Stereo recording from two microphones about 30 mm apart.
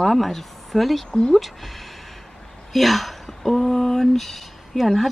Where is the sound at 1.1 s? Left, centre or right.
Left.